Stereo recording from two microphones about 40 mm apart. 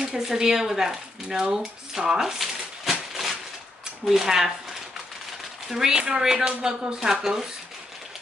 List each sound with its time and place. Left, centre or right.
0.0 s speech: centre
1.5 s a sound: centre
4.1 s speech: centre